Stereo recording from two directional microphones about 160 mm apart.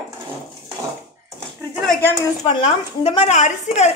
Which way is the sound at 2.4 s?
35° left (ahead or behind).